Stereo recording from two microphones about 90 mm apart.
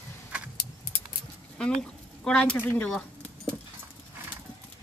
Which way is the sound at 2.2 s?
10° left (ahead or behind).